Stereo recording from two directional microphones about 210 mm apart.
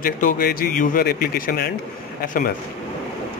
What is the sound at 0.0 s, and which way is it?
Speech, 40° left (ahead or behind).